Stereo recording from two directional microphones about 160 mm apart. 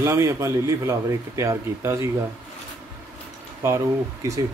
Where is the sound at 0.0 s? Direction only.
20° right (ahead or behind).